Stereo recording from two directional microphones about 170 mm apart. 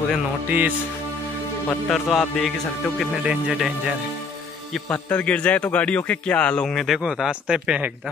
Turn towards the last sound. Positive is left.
turn(degrees=-5)  # may be behind; listen again after turning